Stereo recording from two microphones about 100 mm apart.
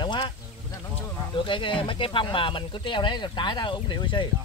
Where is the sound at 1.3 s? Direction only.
55° left (ahead or behind).